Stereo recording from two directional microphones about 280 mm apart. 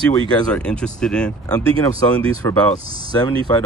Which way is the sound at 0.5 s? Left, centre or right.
Centre.